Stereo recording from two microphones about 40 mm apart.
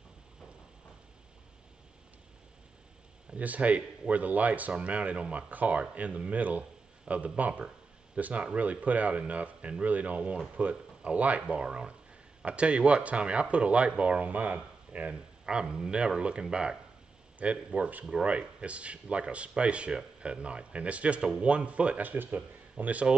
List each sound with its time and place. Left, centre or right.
3.3 s speech: right
15.4 s speech: right
22.0 s speech: right